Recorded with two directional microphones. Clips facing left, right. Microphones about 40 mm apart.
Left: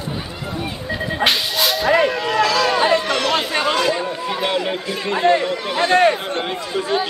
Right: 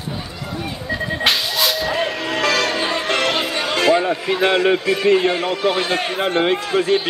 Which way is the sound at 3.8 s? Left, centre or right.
Right.